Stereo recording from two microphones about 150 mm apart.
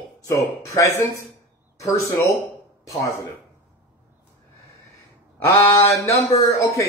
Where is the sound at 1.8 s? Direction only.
20° left (ahead or behind).